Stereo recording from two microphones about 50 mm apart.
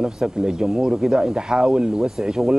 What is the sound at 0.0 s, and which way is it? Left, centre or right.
Speech, centre.